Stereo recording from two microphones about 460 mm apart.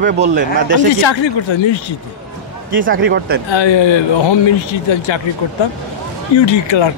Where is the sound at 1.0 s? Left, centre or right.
Left.